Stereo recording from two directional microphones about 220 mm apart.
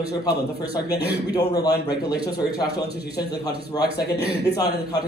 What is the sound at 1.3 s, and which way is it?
Speech, 15° left (ahead or behind).